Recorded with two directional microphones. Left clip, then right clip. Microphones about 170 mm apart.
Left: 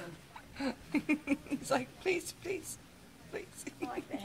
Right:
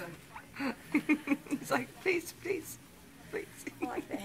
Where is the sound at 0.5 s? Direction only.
50° left (ahead or behind).